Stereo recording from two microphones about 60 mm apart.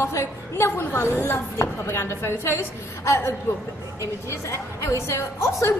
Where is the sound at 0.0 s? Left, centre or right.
Left.